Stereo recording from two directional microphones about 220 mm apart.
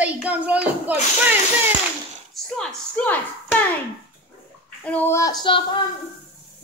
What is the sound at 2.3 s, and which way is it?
Speech, 5° left (ahead or behind).